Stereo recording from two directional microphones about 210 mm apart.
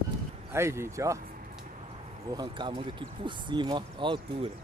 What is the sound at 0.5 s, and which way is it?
Speech, 10° right (ahead or behind).